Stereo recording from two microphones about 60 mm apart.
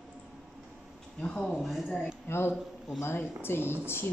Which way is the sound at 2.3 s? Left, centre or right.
Left.